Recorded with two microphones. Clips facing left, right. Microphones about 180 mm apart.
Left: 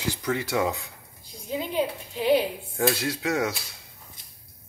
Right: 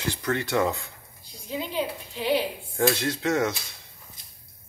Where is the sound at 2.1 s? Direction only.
45° left (ahead or behind).